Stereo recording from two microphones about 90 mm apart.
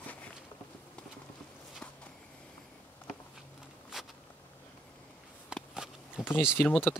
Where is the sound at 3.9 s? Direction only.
5° right (ahead or behind).